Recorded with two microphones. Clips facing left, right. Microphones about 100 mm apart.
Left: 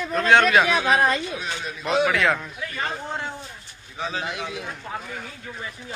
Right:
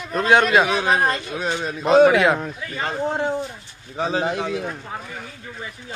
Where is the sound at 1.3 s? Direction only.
40° right (ahead or behind).